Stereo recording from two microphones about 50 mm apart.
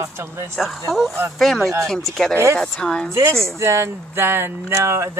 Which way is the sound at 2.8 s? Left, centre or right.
Centre.